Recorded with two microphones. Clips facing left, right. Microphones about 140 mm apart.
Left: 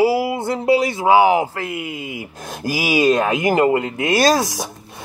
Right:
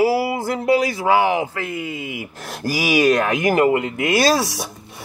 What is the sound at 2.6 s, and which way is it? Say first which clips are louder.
Speech: even; 25° left (ahead or behind).